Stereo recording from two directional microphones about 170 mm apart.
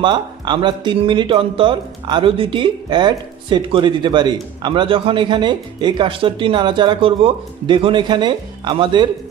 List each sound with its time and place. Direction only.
0.0 s speech: 30° right (ahead or behind)